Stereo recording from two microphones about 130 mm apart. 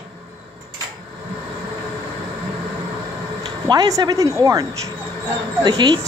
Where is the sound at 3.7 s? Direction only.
30° right (ahead or behind).